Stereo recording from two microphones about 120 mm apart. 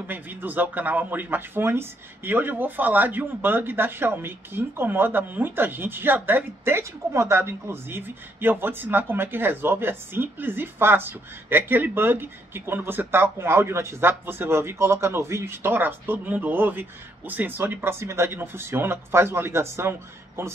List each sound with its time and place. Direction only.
0.0 s speech: 15° right (ahead or behind)